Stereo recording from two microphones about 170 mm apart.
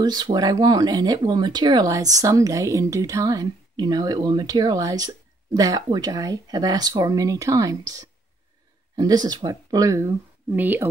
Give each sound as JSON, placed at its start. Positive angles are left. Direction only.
{"t": 0.0, "sound": "speech", "side_deg": -25}